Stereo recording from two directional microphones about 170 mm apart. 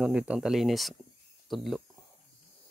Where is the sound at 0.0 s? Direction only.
5° right (ahead or behind).